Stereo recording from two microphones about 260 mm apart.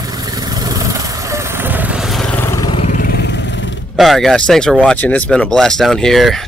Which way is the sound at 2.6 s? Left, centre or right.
Centre.